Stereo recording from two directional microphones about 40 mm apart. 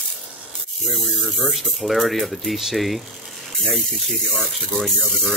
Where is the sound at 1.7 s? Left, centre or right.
Centre.